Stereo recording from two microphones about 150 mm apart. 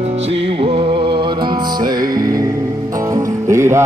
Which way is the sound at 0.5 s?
35° right (ahead or behind).